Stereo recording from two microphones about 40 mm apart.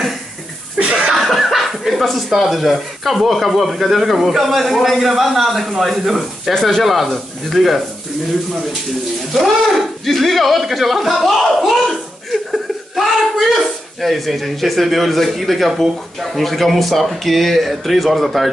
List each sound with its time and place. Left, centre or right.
0.7 s a sound: right
1.1 s speech: centre
6.5 s speech: centre
6.8 s speech: centre
9.3 s speech: centre